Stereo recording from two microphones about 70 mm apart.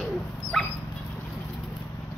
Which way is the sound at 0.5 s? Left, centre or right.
Centre.